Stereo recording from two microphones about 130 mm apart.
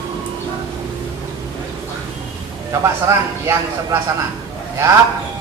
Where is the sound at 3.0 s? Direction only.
20° right (ahead or behind).